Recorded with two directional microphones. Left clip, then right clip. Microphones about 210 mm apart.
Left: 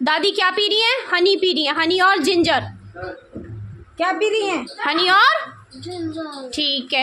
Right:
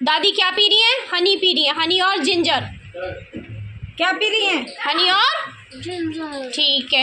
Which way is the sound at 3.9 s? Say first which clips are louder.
Right 1 dB; 35° left (ahead or behind).